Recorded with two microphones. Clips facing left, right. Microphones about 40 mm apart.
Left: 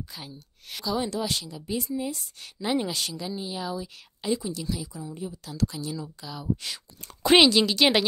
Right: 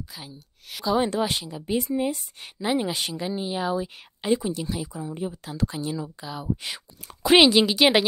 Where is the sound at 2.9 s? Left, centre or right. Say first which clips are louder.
Right 3 dB; right.